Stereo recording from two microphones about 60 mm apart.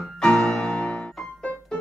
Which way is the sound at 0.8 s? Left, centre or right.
Centre.